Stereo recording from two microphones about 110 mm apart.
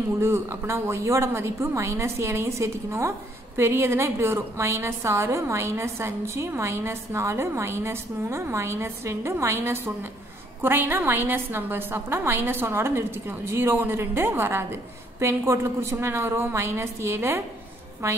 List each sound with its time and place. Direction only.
0.2 s a woman's voice: 25° right (ahead or behind)